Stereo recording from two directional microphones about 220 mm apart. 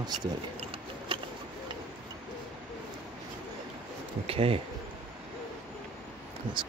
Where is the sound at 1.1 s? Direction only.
20° right (ahead or behind).